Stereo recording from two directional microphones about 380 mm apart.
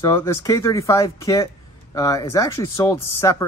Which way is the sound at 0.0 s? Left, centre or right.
Centre.